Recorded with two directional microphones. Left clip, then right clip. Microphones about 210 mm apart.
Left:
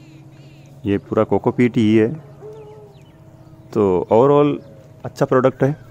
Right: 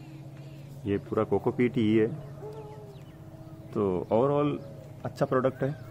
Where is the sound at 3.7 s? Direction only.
45° left (ahead or behind).